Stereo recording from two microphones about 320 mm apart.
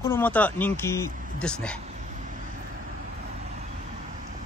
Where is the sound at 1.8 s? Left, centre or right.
Right.